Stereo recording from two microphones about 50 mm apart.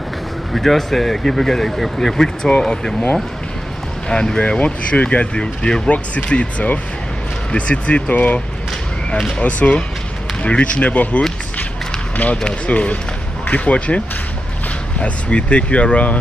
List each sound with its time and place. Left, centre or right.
0.5 s speech: centre
4.1 s speech: centre
12.4 s speech: left